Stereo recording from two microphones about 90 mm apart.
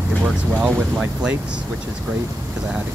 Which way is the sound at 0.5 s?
20° right (ahead or behind).